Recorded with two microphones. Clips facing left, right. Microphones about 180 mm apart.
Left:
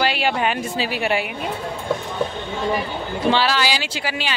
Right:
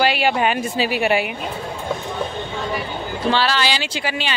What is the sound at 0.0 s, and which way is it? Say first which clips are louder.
A woman's voice: right 2 dB; 5° right (ahead or behind).